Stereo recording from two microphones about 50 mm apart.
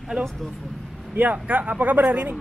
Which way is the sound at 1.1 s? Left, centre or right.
Right.